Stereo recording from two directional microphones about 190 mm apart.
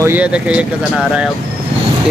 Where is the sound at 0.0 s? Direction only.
10° right (ahead or behind).